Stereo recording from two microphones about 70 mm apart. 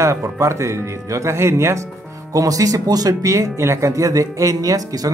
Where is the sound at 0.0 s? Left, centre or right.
Right.